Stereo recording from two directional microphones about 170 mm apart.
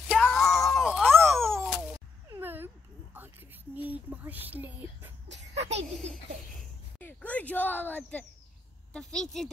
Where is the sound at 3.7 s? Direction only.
10° right (ahead or behind).